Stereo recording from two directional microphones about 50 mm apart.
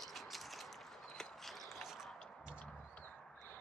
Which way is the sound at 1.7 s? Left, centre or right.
Centre.